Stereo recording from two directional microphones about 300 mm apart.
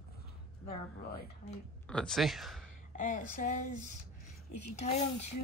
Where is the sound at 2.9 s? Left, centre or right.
Left.